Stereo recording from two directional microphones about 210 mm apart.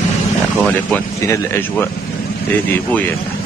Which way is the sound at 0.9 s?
10° left (ahead or behind).